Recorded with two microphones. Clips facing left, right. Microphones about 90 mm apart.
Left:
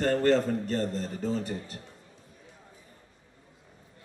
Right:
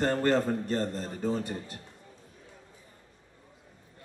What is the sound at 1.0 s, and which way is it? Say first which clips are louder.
Speech: even; 45° right (ahead or behind).